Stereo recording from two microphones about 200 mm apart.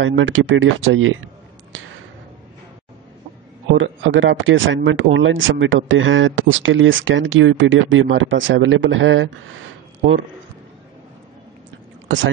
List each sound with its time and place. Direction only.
0.0 s speech: 75° right (ahead or behind)
3.7 s speech: 75° right (ahead or behind)